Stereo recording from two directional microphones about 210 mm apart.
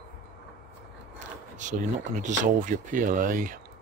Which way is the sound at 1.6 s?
35° right (ahead or behind).